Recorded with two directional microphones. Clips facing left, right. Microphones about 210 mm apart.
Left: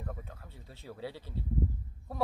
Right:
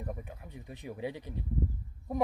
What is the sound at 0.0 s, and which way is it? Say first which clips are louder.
Speech: right 3 dB; 15° right (ahead or behind).